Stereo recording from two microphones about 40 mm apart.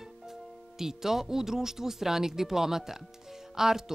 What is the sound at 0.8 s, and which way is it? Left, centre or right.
Speech, centre.